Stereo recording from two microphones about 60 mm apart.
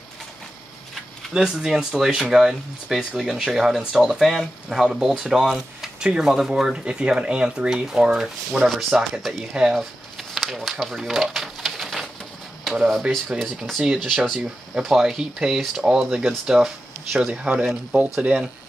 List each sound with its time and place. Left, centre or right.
1.3 s speech: centre
9.8 s a sound: centre
13.4 s speech: centre
17.3 s speech: centre